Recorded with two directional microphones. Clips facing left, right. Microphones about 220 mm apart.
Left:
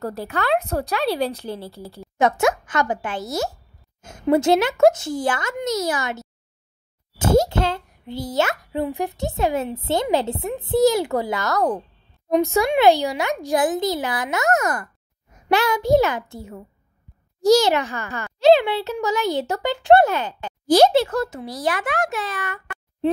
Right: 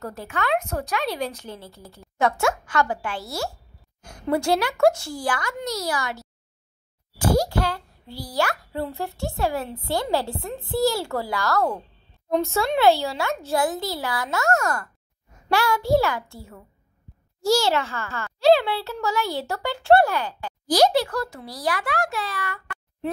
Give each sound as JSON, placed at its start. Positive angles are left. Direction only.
{"t": 0.0, "sound": "a woman's voice", "side_deg": 35}
{"t": 2.1, "sound": "a child's voice", "side_deg": 20}